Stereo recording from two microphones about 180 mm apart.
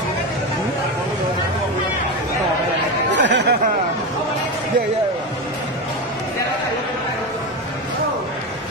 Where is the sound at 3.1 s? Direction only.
80° right.